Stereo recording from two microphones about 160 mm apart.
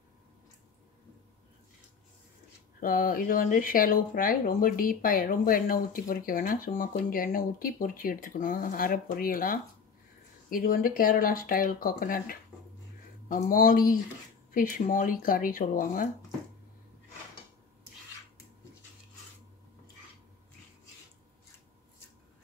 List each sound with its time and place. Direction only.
2.8 s speech: 60° left (ahead or behind)